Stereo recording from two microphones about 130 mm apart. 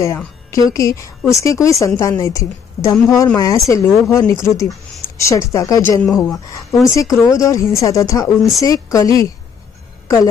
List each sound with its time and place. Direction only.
0.7 s a woman's voice: 25° left (ahead or behind)
6.0 s speech: centre (ahead or behind)
7.0 s a woman's voice: 25° left (ahead or behind)